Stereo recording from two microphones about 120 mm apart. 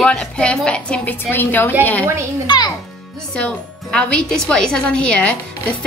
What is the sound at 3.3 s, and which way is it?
A woman's voice, 10° left (ahead or behind).